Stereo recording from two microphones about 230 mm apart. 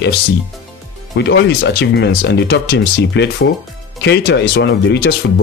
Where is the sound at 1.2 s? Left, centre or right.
Left.